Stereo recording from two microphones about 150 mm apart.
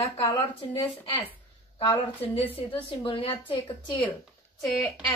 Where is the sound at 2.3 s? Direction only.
40° left (ahead or behind).